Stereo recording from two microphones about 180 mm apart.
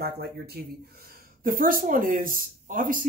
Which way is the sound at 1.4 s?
50° right (ahead or behind).